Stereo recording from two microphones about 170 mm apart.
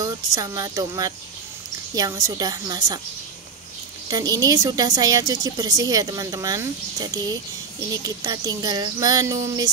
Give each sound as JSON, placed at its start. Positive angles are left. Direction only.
{"t": 0.0, "sound": "a woman's voice", "side_deg": -20}
{"t": 4.1, "sound": "a woman's voice", "side_deg": -20}